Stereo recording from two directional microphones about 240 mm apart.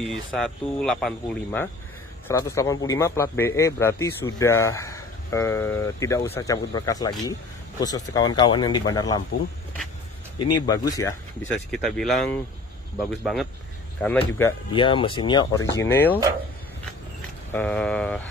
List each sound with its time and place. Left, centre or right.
0.1 s a man's voice: centre
10.4 s a man's voice: centre
11.7 s a man's voice: centre
14.7 s a man's voice: left
17.5 s speech: centre